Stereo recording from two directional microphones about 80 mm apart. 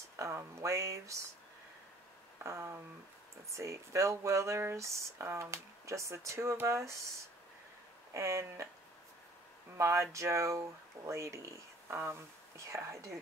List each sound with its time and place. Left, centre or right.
0.2 s speech: right
2.3 s a sound: right
3.5 s speech: right
8.1 s speech: right
9.8 s speech: right